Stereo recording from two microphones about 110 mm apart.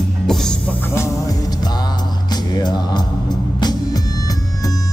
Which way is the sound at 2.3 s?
40° left (ahead or behind).